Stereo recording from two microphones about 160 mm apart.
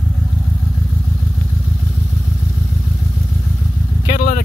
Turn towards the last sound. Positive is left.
turn(degrees=60)  # may be behind; listen again after turning